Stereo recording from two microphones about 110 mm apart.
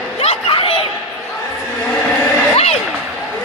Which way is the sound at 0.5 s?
55° left (ahead or behind).